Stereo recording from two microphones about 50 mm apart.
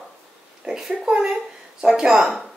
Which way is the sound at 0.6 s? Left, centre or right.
Centre.